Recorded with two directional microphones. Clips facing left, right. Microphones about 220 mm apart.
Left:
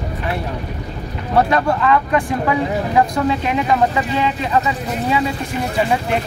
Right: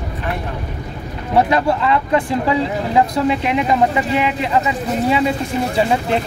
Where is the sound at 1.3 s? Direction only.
20° right (ahead or behind).